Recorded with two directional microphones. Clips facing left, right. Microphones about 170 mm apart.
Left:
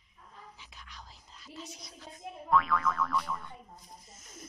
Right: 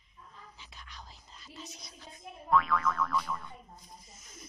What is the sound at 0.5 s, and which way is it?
Whispering, 10° left (ahead or behind).